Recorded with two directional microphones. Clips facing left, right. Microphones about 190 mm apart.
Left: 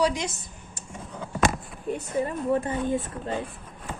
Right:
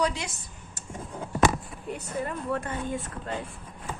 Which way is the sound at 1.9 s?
25° left (ahead or behind).